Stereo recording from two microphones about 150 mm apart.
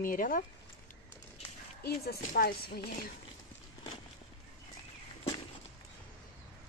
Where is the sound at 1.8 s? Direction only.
90° left.